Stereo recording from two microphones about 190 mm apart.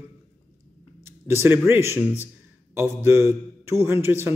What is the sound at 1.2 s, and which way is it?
A man's voice, 10° right (ahead or behind).